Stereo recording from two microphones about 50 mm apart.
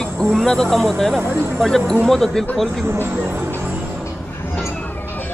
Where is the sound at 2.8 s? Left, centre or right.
Right.